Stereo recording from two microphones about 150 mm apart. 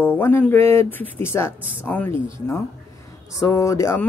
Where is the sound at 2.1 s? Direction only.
35° right (ahead or behind).